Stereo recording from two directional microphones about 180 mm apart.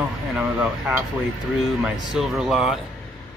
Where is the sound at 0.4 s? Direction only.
5° right (ahead or behind).